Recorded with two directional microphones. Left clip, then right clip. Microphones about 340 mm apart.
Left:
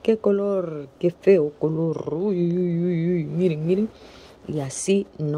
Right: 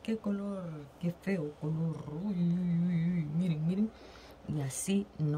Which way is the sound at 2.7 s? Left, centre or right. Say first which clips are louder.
Left 13 dB; left.